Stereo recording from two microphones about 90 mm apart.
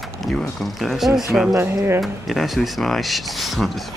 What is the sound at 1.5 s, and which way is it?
Speech, 25° right (ahead or behind).